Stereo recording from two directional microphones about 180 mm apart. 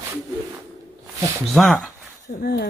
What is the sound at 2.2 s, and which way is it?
Speech, 60° left (ahead or behind).